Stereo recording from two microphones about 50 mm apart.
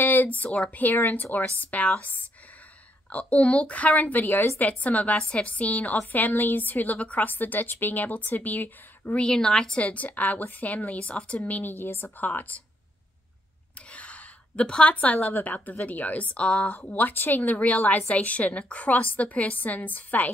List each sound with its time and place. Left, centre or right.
0.0 s a woman's voice: left
3.1 s a woman's voice: left
9.2 s a woman's voice: centre
11.3 s a woman's voice: left
13.9 s a sound: left
15.4 s a woman's voice: left
16.3 s a woman's voice: centre
16.8 s a woman's voice: left